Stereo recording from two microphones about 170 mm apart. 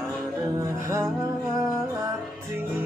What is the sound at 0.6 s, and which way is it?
Music, 15° right (ahead or behind).